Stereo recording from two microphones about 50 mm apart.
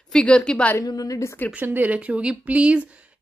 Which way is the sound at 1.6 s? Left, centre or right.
Right.